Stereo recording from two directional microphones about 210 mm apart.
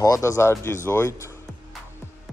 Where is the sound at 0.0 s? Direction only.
15° left (ahead or behind).